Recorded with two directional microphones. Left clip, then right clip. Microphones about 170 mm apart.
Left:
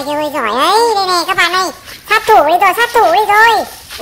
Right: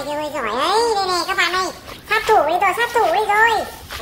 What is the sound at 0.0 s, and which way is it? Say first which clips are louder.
A child's voice: left 7 dB; 40° left (ahead or behind).